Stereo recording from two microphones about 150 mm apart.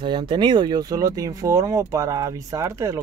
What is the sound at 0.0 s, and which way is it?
Speech, 30° right (ahead or behind).